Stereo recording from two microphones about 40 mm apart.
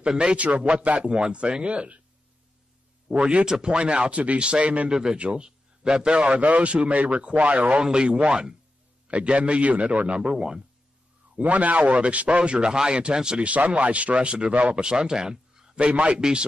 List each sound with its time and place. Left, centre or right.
0.2 s speech: right
3.1 s speech: right
3.4 s speech: centre
3.7 s a man's voice: right
7.8 s speech: right
11.3 s speech: right
13.5 s a man's voice: right
14.8 s a man's voice: right
15.9 s a man's voice: right
16.2 s speech: centre